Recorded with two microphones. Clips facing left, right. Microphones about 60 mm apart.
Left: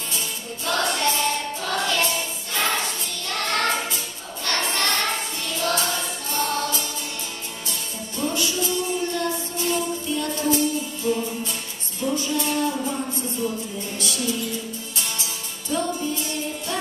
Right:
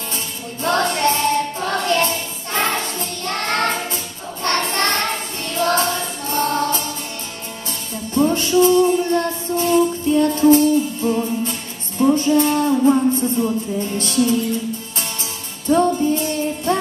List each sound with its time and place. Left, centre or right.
0.7 s choir: right
5.5 s music: right
8.1 s music: right
15.7 s music: right